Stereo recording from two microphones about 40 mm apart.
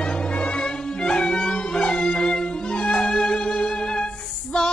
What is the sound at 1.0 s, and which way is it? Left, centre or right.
Music, centre.